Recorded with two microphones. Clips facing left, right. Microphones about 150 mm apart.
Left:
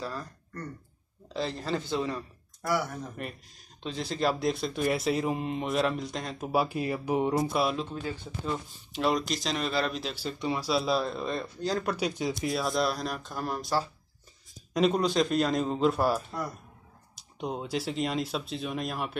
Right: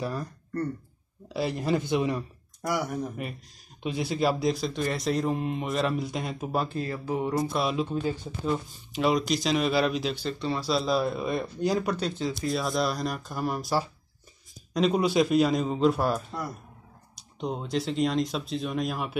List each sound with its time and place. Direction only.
0.0 s speech: 15° right (ahead or behind)
1.3 s speech: 15° right (ahead or behind)
3.2 s a man's voice: 5° right (ahead or behind); by 7.4 s 20° left (ahead or behind)
7.5 s a man's voice: centre (ahead or behind)
8.1 s speech: 10° right (ahead or behind)
8.9 s a man's voice: centre (ahead or behind)
11.0 s speech: 5° right (ahead or behind)
11.8 s a man's voice: centre (ahead or behind)
12.1 s speech: 15° left (ahead or behind)
12.5 s a man's voice: centre (ahead or behind)